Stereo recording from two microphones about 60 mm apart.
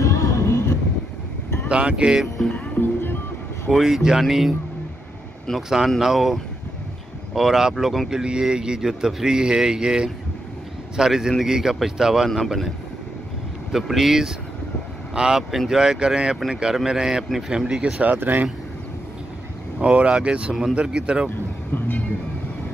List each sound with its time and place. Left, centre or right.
0.0 s vehicle: left
1.7 s speech: centre
2.5 s music: left
3.7 s speech: centre
5.7 s speech: centre
8.1 s speech: centre
13.7 s speech: centre
18.0 s speech: right
19.8 s speech: centre
21.7 s speech: left